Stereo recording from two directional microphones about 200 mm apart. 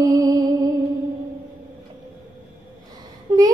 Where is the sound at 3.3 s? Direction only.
15° right (ahead or behind).